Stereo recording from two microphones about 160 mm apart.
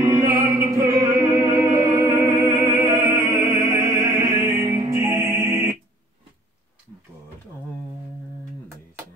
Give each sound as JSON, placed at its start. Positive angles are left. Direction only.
{"t": 0.0, "sound": "music", "side_deg": -20}